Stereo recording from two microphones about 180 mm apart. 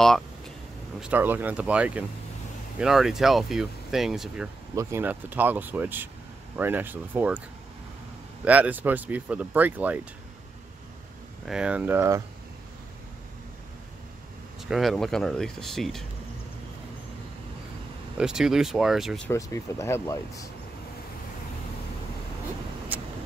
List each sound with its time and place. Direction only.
1.0 s speech: 10° right (ahead or behind)
8.5 s speech: 10° right (ahead or behind)
11.4 s speech: 5° right (ahead or behind)
14.6 s speech: centre (ahead or behind)
18.1 s speech: 5° right (ahead or behind)
19.2 s speech: 15° left (ahead or behind)
22.9 s vehicle: 10° right (ahead or behind)